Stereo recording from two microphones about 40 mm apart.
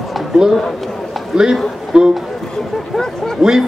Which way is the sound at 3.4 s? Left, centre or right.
Centre.